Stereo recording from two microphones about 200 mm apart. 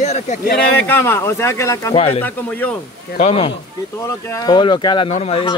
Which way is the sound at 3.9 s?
15° left (ahead or behind).